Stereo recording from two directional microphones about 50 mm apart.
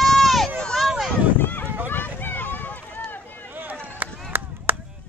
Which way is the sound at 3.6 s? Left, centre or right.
Right.